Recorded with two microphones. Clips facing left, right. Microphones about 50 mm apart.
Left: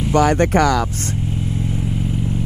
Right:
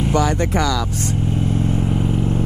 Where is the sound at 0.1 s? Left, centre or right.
Left.